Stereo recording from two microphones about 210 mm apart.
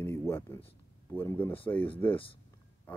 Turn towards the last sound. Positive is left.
turn(degrees=10)  # may be behind; listen again after turning